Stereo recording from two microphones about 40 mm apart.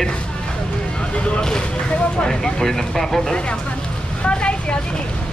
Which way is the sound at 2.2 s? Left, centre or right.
Centre.